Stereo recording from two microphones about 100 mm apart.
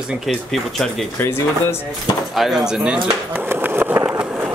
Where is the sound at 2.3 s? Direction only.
Centre (ahead or behind); by 4.2 s 25° right (ahead or behind).